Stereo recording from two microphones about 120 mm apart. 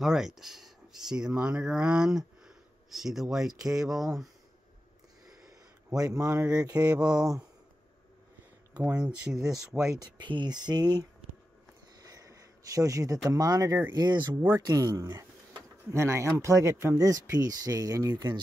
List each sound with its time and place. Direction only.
0.0 s speech: 5° right (ahead or behind)
5.9 s speech: 30° right (ahead or behind)
6.8 s speech: 10° right (ahead or behind)
8.7 s speech: 10° right (ahead or behind)
9.8 s speech: 35° right (ahead or behind)
12.0 s a sound: 30° right (ahead or behind)
13.3 s speech: 30° right (ahead or behind)